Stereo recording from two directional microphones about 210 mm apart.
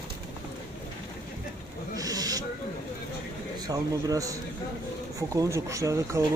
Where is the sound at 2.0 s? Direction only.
15° right (ahead or behind).